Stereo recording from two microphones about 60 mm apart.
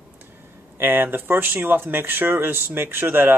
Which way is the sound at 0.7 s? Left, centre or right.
Right.